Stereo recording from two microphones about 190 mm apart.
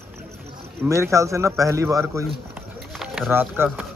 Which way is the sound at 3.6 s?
10° right (ahead or behind).